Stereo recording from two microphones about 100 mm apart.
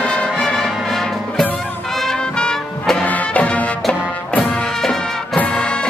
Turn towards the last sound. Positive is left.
turn(degrees=10)  # may be behind; listen again after turning